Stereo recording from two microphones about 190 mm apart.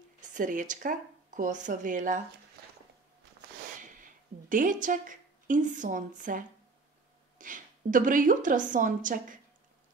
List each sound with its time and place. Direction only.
0.2 s speech: 40° right (ahead or behind)
4.0 s a woman's voice: 45° right (ahead or behind)